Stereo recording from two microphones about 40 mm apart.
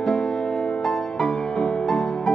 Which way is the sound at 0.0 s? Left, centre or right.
Centre.